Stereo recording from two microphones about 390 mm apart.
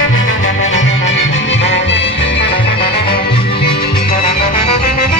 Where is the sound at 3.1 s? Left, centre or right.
Centre.